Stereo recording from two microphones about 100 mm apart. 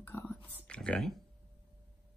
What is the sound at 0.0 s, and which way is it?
Whispering, 25° left (ahead or behind).